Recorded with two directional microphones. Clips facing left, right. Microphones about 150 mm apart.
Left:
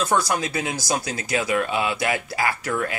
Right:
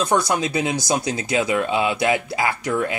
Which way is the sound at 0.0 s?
20° right (ahead or behind).